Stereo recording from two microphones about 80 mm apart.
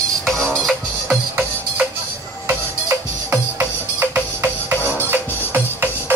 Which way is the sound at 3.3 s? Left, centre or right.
Right.